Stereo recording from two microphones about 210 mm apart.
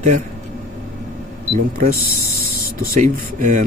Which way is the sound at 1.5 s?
40° right (ahead or behind).